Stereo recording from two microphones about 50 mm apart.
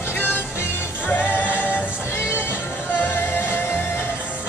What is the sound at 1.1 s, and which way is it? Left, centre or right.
Music, left.